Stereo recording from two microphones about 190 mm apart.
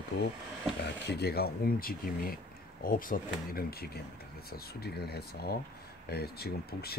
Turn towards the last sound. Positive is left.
turn(degrees=55)  # may be behind; listen again after turning